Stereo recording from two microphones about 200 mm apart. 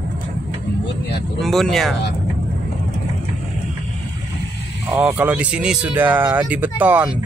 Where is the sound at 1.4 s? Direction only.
Centre (ahead or behind).